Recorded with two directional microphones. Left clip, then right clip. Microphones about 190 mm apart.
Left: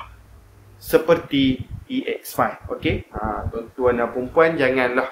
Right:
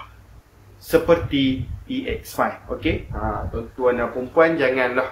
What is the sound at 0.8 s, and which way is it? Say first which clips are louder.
A man's voice: even; 55° left (ahead or behind).